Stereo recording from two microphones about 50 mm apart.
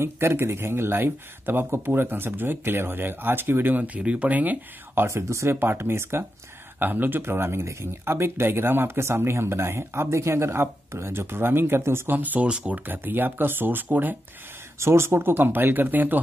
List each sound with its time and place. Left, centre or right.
0.0 s speech: right
5.0 s speech: right
5.6 s speech: right
6.8 s speech: right
7.2 s speech: right
12.1 s speech: right
12.4 s speech: centre
12.7 s speech: right
14.8 s speech: right